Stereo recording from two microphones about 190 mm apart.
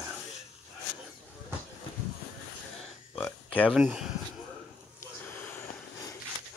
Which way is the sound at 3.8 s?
5° right (ahead or behind).